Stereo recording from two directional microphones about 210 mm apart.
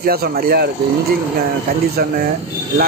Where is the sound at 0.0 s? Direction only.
45° right (ahead or behind).